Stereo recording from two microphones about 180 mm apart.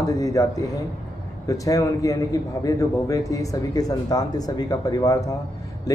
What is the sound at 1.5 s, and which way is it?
A man's voice, 20° left (ahead or behind).